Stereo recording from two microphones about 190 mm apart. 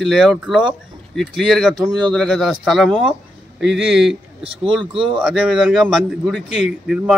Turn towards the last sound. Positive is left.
turn(degrees=0)  # may be behind; listen again after turning